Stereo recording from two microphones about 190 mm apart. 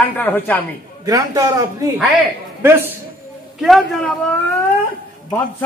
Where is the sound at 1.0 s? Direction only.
20° right (ahead or behind).